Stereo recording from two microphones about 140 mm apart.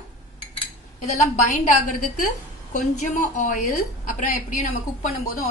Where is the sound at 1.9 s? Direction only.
70° left (ahead or behind).